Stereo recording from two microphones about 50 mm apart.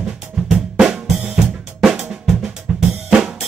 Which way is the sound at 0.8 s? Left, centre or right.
Centre.